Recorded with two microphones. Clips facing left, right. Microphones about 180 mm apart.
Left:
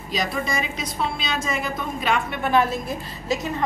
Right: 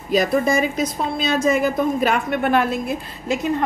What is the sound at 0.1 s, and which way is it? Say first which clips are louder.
A woman's voice: right 8 dB; 50° right (ahead or behind).